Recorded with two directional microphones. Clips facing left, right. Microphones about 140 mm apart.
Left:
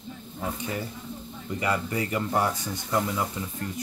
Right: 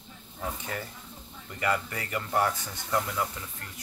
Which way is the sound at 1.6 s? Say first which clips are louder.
Left 2 dB; 20° left (ahead or behind).